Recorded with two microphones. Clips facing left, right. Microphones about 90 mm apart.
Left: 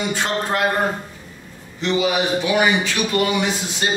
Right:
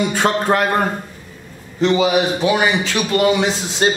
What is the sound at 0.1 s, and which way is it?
Speech, 60° right (ahead or behind).